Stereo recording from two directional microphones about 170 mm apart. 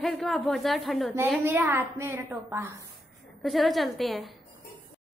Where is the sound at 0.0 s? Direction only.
Centre (ahead or behind).